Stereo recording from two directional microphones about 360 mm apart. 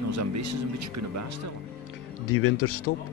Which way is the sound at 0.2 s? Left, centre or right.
Right.